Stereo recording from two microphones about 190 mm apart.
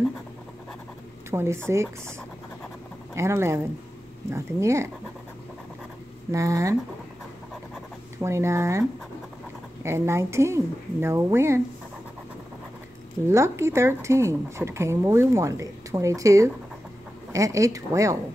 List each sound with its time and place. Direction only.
1.3 s speech: 15° right (ahead or behind)
3.2 s speech: 15° right (ahead or behind)
6.3 s speech: 15° right (ahead or behind)
8.2 s speech: 15° right (ahead or behind)
9.8 s speech: 15° right (ahead or behind)
13.3 s speech: 15° right (ahead or behind)